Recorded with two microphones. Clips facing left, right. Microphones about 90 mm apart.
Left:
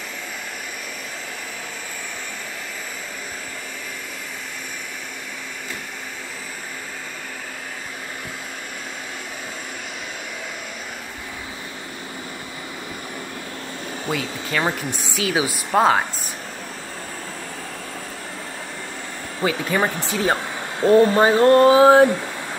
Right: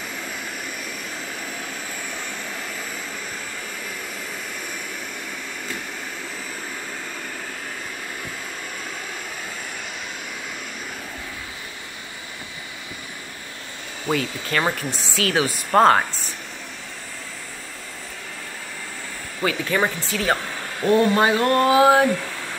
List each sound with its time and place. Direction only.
14.1 s speech: 10° left (ahead or behind)
19.4 s speech: 25° left (ahead or behind)